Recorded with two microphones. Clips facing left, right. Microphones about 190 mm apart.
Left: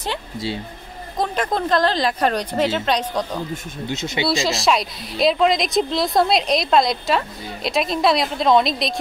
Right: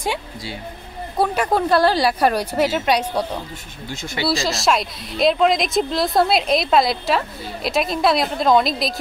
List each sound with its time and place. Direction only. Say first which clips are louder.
1.1 s speech: right 3 dB; 10° right (ahead or behind)
3.9 s speech: left 2 dB; 20° left (ahead or behind)
4.3 s a woman's voice: even; centre (ahead or behind)